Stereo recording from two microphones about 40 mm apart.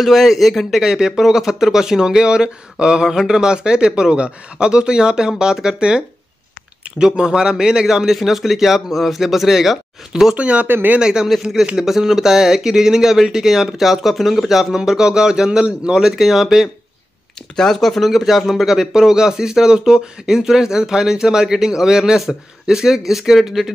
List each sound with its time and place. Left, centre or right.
0.0 s speech: centre
10.3 s speech: right
11.0 s speech: centre
14.8 s speech: centre
17.6 s speech: centre
18.7 s speech: centre